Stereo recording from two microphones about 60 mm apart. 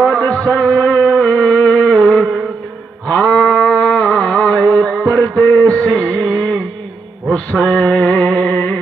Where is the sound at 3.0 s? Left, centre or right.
Centre.